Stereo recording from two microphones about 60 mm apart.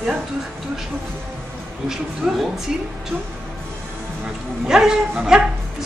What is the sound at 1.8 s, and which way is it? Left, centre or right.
Speech, centre.